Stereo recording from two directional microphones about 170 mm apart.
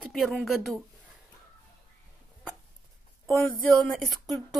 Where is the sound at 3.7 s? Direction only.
Centre (ahead or behind).